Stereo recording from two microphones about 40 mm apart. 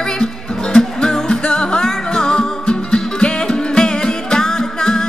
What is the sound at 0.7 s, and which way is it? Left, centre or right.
Music, centre.